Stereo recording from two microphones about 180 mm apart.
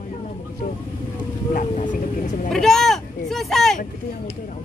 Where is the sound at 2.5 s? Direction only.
Centre (ahead or behind).